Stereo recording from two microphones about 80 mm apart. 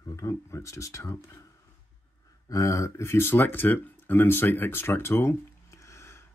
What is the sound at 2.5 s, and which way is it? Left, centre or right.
Speech, left.